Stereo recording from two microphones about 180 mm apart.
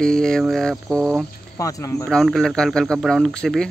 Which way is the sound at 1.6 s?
15° left (ahead or behind).